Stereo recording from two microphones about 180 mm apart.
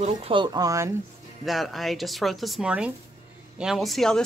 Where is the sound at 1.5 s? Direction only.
Centre (ahead or behind).